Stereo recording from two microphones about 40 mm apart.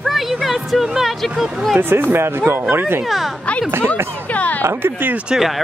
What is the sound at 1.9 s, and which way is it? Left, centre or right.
Speech, right.